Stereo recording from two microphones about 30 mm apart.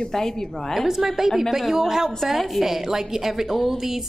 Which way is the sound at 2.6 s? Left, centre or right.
Centre.